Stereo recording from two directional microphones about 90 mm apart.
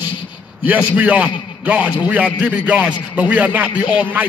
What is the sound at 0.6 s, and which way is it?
A man's voice, 20° right (ahead or behind).